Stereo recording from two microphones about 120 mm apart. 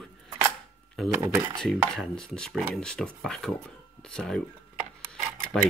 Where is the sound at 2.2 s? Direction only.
5° left (ahead or behind).